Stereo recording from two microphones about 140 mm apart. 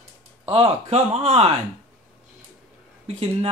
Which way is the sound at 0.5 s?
45° right (ahead or behind).